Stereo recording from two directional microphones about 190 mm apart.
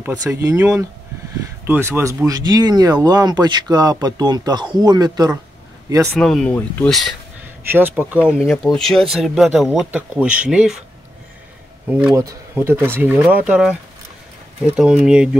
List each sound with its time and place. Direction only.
0.0 s speech: 15° right (ahead or behind)
6.1 s speech: 5° left (ahead or behind)
7.7 s speech: 10° right (ahead or behind)
12.1 s speech: 20° right (ahead or behind)